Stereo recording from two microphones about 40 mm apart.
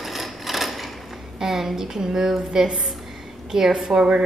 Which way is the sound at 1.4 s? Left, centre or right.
Centre.